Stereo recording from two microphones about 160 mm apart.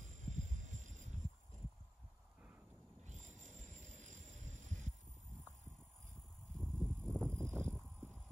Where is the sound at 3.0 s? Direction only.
50° right (ahead or behind).